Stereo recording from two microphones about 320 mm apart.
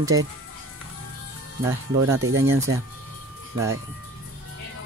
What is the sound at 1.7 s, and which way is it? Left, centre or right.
Speech, centre.